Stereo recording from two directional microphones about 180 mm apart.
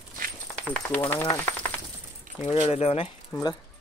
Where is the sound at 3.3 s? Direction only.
20° left (ahead or behind).